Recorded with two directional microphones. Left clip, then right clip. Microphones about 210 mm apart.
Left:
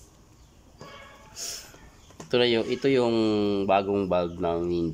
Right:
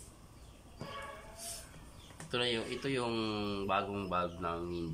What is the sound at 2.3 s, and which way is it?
Speech, 40° left (ahead or behind).